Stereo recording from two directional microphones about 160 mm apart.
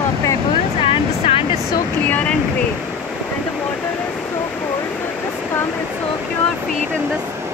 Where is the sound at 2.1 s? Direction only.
10° left (ahead or behind).